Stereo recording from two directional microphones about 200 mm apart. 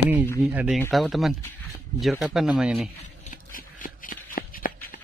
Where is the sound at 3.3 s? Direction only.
45° left (ahead or behind).